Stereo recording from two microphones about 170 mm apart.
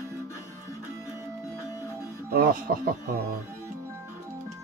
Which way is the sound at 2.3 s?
55° right (ahead or behind).